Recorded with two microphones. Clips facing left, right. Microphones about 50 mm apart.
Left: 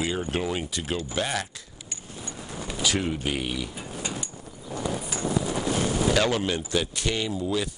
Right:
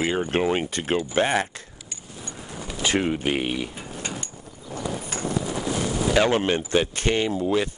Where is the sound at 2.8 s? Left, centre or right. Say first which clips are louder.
Right 4 dB; right.